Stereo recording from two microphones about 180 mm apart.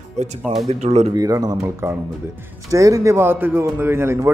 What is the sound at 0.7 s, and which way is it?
Speech, 35° right (ahead or behind).